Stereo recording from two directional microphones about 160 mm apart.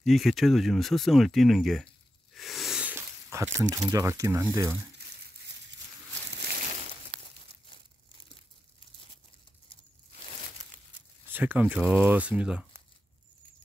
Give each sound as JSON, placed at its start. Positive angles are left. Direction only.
{"t": 0.0, "sound": "speech", "side_deg": 0}
{"t": 2.3, "sound": "a sound", "side_deg": 0}
{"t": 11.3, "sound": "speech", "side_deg": -10}